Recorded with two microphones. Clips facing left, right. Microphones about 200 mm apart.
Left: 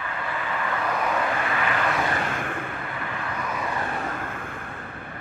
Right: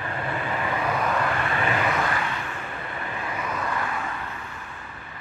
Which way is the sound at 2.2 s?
50° left (ahead or behind).